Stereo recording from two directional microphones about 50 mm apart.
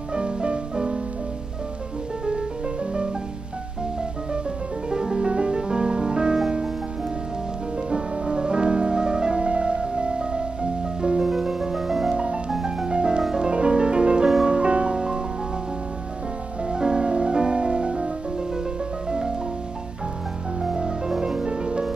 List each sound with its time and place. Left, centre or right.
0.1 s music: centre
2.2 s music: centre
4.8 s music: centre
7.9 s music: centre
12.2 s music: centre
16.6 s music: centre
20.6 s music: centre